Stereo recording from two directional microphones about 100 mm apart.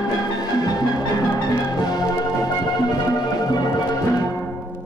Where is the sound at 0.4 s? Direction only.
40° left (ahead or behind).